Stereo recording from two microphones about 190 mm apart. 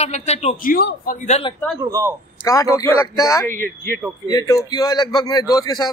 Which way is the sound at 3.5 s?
50° right (ahead or behind).